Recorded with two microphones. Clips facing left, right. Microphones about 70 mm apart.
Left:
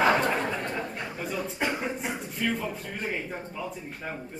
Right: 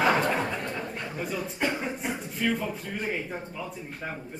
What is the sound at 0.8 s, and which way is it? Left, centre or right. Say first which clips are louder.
Speech: left 1 dB; centre.